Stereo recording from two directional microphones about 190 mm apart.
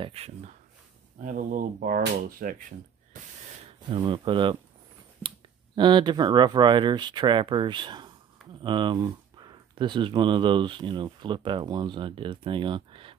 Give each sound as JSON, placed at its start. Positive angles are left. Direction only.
{"t": 0.0, "sound": "speech", "side_deg": -30}
{"t": 1.2, "sound": "speech", "side_deg": -45}
{"t": 3.8, "sound": "speech", "side_deg": -25}
{"t": 5.8, "sound": "speech", "side_deg": -25}